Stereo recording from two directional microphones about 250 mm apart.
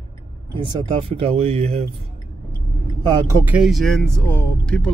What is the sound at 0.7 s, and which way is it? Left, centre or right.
Speech, right.